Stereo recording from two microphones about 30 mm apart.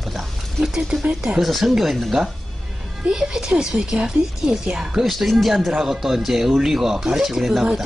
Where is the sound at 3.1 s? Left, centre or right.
Right.